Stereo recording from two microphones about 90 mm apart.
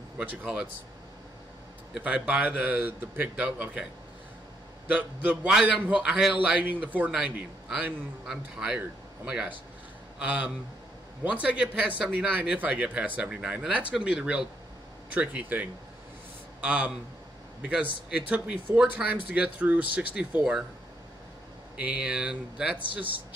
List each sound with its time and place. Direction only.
0.2 s a man's voice: 15° right (ahead or behind)
2.0 s a man's voice: 10° right (ahead or behind)
4.8 s a man's voice: 15° right (ahead or behind)
21.7 s a man's voice: 15° right (ahead or behind)